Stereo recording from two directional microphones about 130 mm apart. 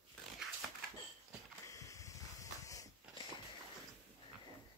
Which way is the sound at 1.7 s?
25° left (ahead or behind).